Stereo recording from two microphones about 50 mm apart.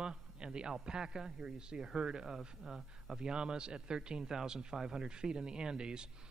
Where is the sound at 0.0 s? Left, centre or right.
Centre.